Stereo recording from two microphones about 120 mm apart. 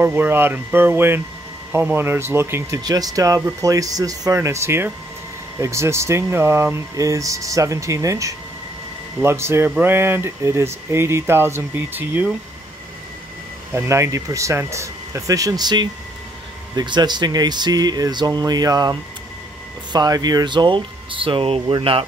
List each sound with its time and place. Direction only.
0.0 s speech: 20° right (ahead or behind)
13.7 s speech: 25° right (ahead or behind); by 22.0 s 45° right (ahead or behind)